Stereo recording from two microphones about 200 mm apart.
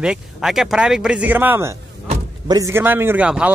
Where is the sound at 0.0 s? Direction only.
5° right (ahead or behind).